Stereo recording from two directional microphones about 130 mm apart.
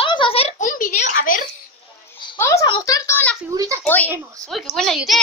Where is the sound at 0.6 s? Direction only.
90° left.